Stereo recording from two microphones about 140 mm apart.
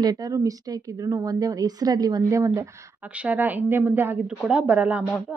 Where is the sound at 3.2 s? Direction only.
10° right (ahead or behind).